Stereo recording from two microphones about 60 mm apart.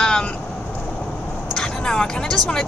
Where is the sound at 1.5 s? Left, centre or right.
Centre.